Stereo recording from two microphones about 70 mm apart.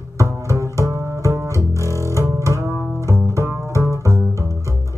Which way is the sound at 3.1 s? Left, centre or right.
Right.